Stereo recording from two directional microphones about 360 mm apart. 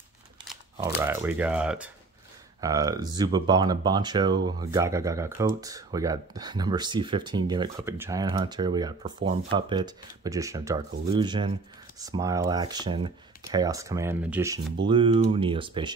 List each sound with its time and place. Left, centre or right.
0.8 s speech: centre